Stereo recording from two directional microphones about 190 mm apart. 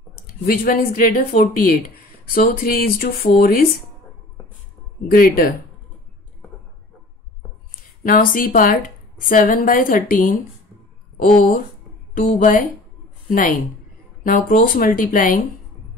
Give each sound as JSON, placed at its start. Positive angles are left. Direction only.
{"t": 0.5, "sound": "a woman's voice", "side_deg": 45}
{"t": 5.1, "sound": "a woman's voice", "side_deg": 50}
{"t": 8.0, "sound": "a woman's voice", "side_deg": 45}
{"t": 12.4, "sound": "a woman's voice", "side_deg": 45}